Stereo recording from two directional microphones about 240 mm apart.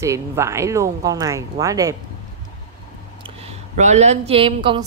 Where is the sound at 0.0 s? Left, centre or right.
Centre.